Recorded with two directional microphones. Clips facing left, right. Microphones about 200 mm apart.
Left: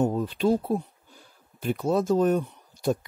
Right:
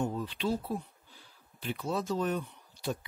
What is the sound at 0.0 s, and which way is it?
Speech, 45° left (ahead or behind).